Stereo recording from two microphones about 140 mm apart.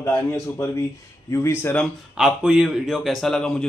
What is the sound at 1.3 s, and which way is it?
Speech, 20° left (ahead or behind).